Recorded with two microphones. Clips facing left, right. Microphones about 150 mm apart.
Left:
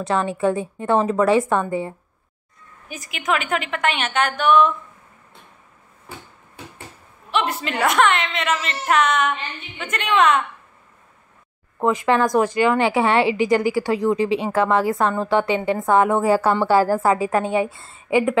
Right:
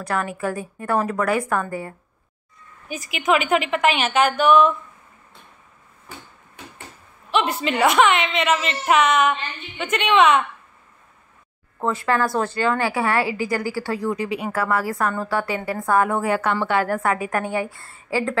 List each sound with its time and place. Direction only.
0.0 s a woman's voice: 25° left (ahead or behind)
2.9 s a woman's voice: 5° right (ahead or behind)
7.2 s a woman's voice: centre (ahead or behind)
11.8 s a woman's voice: 15° left (ahead or behind)